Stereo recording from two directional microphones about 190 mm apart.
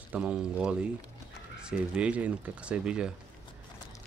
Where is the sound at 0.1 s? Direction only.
5° right (ahead or behind).